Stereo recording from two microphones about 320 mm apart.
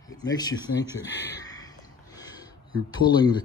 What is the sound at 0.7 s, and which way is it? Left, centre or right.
Speech, left.